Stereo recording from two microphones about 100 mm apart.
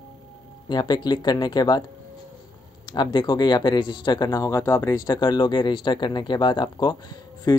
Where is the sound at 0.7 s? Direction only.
45° left (ahead or behind).